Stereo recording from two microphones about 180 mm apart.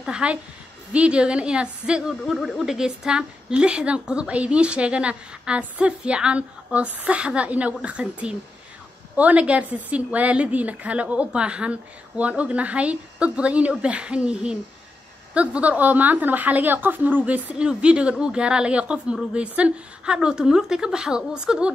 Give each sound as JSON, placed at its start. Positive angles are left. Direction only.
{"t": 0.0, "sound": "a woman's voice", "side_deg": -5}